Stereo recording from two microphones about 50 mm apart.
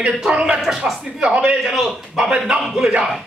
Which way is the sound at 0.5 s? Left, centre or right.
Centre.